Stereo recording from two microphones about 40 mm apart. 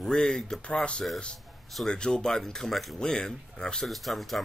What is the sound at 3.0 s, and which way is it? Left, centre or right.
Speech, centre.